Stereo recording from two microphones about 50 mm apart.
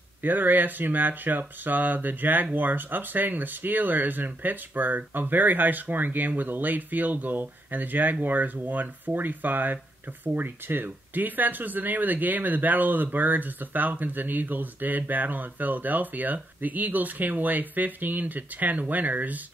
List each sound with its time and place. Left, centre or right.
0.2 s speech: right